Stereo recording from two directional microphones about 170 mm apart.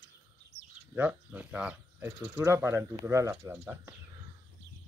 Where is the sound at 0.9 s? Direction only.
10° right (ahead or behind).